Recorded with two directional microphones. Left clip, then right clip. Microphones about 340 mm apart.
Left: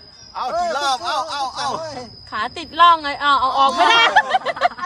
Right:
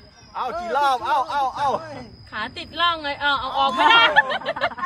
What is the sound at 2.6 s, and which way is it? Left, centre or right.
Speech, left.